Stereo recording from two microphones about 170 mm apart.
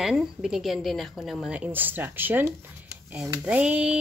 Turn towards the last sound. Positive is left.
turn(degrees=-5)  # may be behind; listen again after turning